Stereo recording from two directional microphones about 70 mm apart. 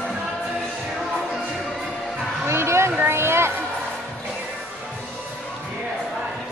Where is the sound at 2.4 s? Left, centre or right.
Right.